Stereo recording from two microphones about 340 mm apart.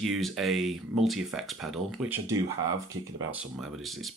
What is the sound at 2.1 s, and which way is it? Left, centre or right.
Speech, right.